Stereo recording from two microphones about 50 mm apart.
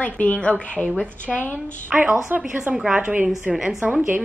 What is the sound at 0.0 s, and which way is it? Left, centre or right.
Speech, left.